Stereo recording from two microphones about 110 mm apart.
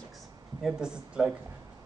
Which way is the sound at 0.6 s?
5° right (ahead or behind).